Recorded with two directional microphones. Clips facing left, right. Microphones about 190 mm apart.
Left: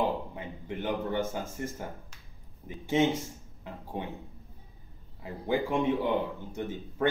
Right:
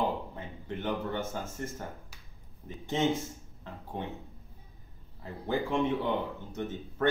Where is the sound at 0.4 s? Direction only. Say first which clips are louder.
Left 2 dB; 15° left (ahead or behind).